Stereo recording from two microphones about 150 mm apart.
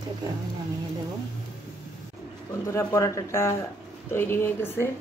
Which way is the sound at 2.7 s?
20° left (ahead or behind).